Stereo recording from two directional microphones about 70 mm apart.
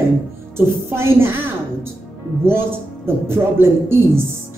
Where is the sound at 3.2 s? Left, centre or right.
Right.